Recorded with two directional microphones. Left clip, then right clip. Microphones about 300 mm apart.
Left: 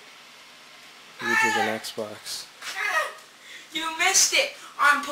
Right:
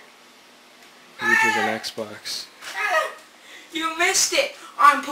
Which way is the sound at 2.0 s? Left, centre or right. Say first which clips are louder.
Right 1 dB; right.